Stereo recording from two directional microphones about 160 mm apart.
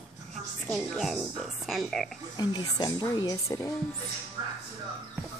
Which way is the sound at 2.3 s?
25° left (ahead or behind).